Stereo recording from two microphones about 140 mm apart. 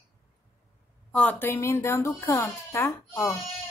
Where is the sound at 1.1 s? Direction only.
10° left (ahead or behind).